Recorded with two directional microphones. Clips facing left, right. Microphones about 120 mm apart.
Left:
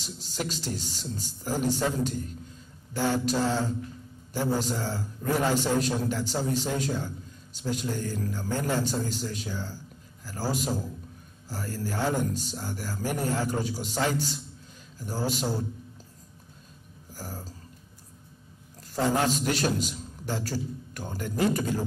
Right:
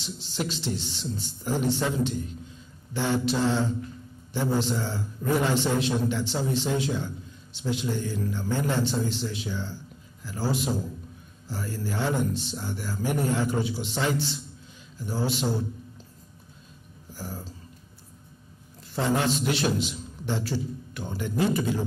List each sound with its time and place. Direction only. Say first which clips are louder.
0.0 s a man's voice: right 2 dB; 45° left (ahead or behind)
17.1 s a sound: right 2 dB; 40° left (ahead or behind)
18.8 s a man's voice: even; 40° left (ahead or behind)